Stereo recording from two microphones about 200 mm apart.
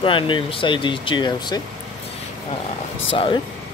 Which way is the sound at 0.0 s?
25° left (ahead or behind).